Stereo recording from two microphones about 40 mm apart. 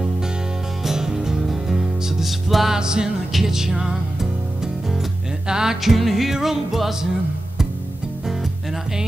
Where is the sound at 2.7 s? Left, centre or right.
Centre.